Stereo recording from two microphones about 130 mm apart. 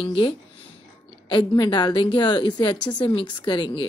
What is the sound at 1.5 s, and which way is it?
Speech, 35° left (ahead or behind).